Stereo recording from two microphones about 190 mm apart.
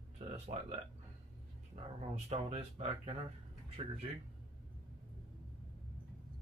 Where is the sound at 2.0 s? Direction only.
35° right (ahead or behind).